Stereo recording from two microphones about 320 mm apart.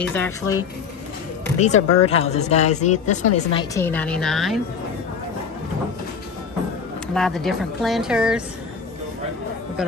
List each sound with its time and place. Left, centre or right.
0.0 s speech: centre
1.8 s speech: left
2.0 s speech: centre
3.7 s a woman's voice: centre
7.2 s a woman's voice: centre